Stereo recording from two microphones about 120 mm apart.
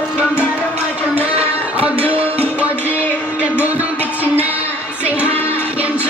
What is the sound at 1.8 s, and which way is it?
Music, 10° right (ahead or behind).